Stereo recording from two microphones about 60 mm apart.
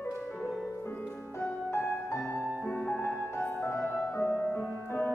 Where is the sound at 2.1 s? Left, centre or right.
Left.